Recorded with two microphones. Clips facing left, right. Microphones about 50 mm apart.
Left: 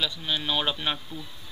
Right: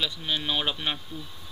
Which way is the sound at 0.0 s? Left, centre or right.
Centre.